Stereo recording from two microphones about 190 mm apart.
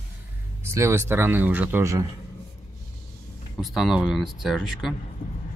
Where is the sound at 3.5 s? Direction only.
Centre (ahead or behind).